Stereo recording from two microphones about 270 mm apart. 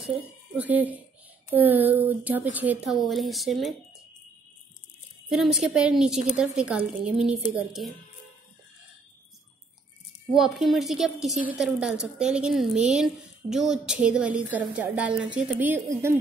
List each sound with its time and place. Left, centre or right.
0.0 s a woman's voice: centre
5.3 s a woman's voice: centre
10.3 s a woman's voice: centre